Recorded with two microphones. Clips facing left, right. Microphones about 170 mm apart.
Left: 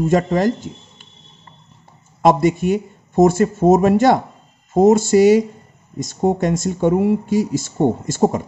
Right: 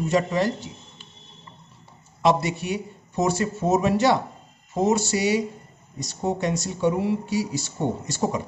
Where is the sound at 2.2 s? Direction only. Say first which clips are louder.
Left 7 dB; 50° left (ahead or behind).